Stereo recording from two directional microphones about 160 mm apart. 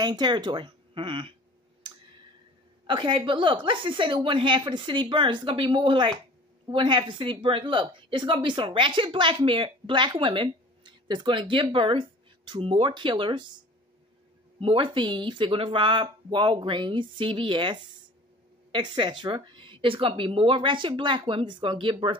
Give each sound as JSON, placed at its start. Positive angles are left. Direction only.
{"t": 0.0, "sound": "speech", "side_deg": -25}
{"t": 2.9, "sound": "a woman's voice", "side_deg": -30}
{"t": 14.6, "sound": "a woman's voice", "side_deg": -35}